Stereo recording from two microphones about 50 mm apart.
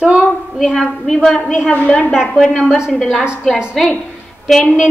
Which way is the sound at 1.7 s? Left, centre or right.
Left.